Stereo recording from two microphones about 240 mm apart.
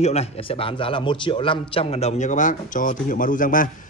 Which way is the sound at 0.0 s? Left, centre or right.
Left.